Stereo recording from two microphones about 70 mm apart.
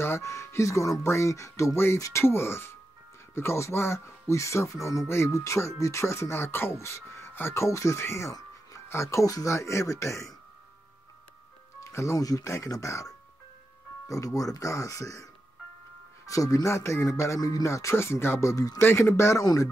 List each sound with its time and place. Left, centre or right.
0.0 s speech: left
11.8 s speech: left
16.3 s speech: left
17.4 s speech: left
17.6 s speech: left
18.5 s speech: left
18.8 s speech: left
19.4 s speech: left